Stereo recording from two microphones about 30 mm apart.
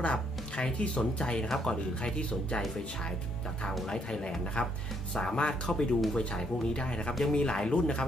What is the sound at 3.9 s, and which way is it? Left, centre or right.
Speech, left.